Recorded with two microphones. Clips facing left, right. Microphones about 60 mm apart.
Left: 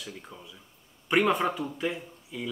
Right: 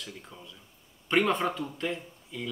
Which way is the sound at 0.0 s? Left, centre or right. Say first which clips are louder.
Left 2 dB; centre.